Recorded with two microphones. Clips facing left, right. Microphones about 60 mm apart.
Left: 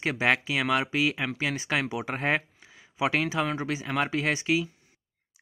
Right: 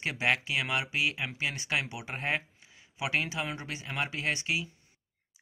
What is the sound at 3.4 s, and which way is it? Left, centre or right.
Speech, left.